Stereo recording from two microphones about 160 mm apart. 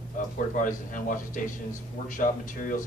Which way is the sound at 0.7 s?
55° left (ahead or behind).